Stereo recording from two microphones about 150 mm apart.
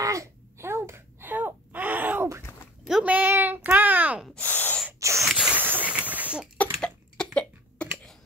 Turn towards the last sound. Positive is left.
turn(degrees=5)  # may be behind; listen again after turning